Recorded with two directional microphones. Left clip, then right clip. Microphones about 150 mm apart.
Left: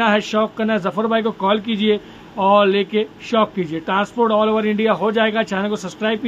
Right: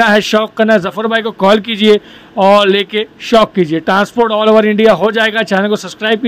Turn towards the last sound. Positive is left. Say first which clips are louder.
# right 8 dB
turn(degrees=-35)  # may be behind; listen again after turning